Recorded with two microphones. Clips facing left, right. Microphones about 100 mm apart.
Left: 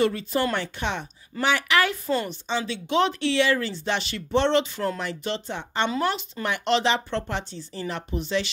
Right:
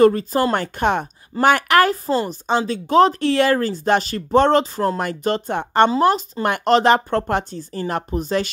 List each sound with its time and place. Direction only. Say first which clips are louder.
0.0 s speech: right 8 dB; 40° right (ahead or behind)
5.9 s speech: right 9 dB; 35° right (ahead or behind)